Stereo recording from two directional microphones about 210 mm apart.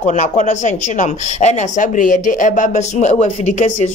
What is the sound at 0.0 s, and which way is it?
Speech, 35° left (ahead or behind).